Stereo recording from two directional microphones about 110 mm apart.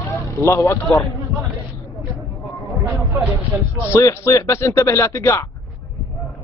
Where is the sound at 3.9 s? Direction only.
25° left (ahead or behind).